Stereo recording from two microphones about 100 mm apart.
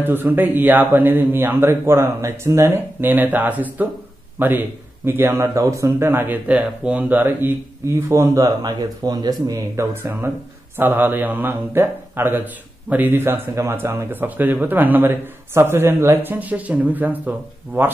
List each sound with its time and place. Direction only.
0.0 s a man's voice: 20° right (ahead or behind)
8.6 s a man's voice: 40° right (ahead or behind); by 17.9 s 20° right (ahead or behind)